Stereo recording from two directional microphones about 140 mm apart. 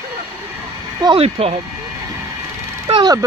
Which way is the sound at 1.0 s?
45° right (ahead or behind).